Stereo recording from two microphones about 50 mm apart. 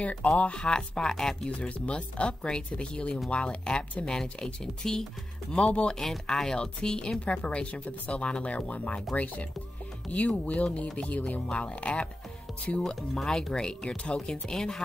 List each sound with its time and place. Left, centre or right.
0.0 s speech: left; by 1.5 s centre
1.7 s speech: left
5.9 s speech: centre; by 12.0 s left
13.1 s speech: centre